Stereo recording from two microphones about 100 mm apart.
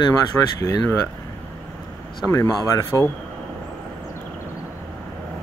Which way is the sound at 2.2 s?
30° left (ahead or behind).